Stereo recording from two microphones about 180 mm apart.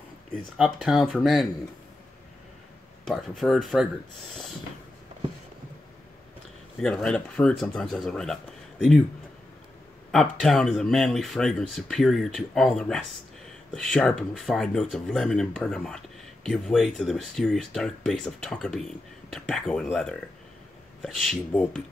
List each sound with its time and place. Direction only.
0.6 s speech: centre (ahead or behind)
3.1 s speech: centre (ahead or behind)
6.8 s speech: 5° left (ahead or behind)
10.1 s speech: centre (ahead or behind)